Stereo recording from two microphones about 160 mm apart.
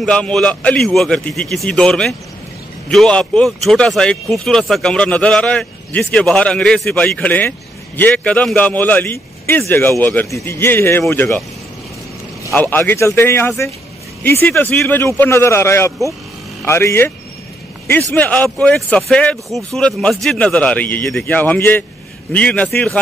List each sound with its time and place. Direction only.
0.0 s a man's voice: 5° left (ahead or behind)
12.5 s speech: 10° left (ahead or behind)
18.1 s speech: 10° left (ahead or behind)